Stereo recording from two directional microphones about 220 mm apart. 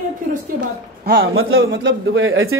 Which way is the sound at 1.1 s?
60° right (ahead or behind).